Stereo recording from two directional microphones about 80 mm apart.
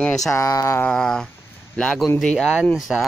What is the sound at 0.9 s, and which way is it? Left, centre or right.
Speech, centre.